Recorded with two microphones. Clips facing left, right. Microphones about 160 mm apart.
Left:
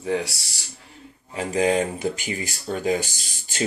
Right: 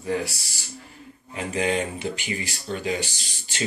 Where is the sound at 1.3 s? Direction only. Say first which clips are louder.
Left 4 dB; 35° left (ahead or behind).